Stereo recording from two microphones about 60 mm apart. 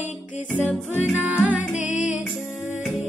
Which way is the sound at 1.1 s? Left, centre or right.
Right.